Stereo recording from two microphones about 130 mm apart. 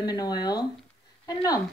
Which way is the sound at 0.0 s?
30° left (ahead or behind).